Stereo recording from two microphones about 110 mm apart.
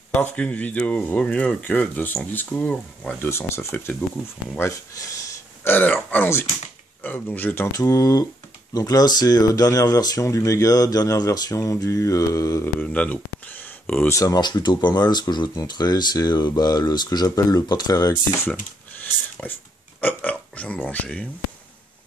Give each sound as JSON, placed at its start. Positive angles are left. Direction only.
{"t": 0.1, "sound": "speech", "side_deg": 10}
{"t": 3.2, "sound": "speech", "side_deg": 25}
{"t": 7.7, "sound": "speech", "side_deg": 30}
{"t": 12.6, "sound": "speech", "side_deg": 10}
{"t": 14.0, "sound": "speech", "side_deg": 30}
{"t": 19.4, "sound": "speech", "side_deg": 15}